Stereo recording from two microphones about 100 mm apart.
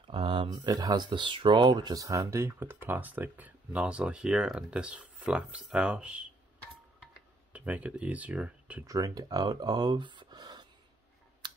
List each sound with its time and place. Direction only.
0.0 s a sound: 60° right (ahead or behind)
0.5 s speech: 40° right (ahead or behind); by 6.2 s 10° right (ahead or behind)
7.5 s speech: 15° right (ahead or behind)
8.8 s speech: 35° right (ahead or behind)